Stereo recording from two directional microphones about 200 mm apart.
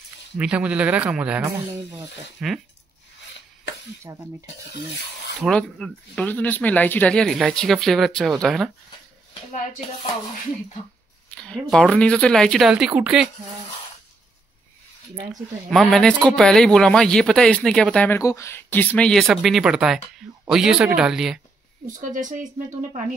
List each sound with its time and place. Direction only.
0.4 s speech: 5° right (ahead or behind)
2.4 s speech: 5° right (ahead or behind)
4.1 s speech: 15° right (ahead or behind)
5.4 s speech: 5° left (ahead or behind)
11.2 s speech: 5° left (ahead or behind)
15.7 s speech: centre (ahead or behind)
21.8 s speech: 40° right (ahead or behind)